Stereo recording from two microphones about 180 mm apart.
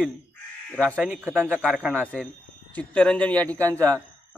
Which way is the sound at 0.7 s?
5° left (ahead or behind).